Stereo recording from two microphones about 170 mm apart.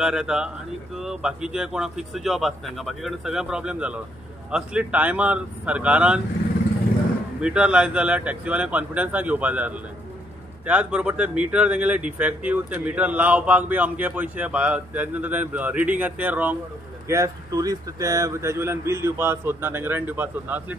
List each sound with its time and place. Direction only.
0.0 s speech: 5° right (ahead or behind)
7.3 s speech: 5° right (ahead or behind)
17.1 s speech: 20° right (ahead or behind)